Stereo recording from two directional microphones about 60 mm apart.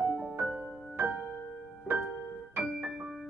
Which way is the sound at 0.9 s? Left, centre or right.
Right.